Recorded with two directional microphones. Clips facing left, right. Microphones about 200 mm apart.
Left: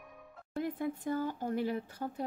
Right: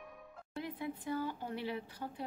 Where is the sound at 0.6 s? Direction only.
45° left (ahead or behind).